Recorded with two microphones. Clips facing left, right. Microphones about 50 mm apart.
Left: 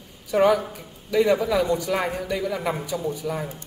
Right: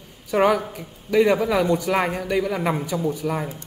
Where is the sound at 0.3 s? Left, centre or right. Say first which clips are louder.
Even; right.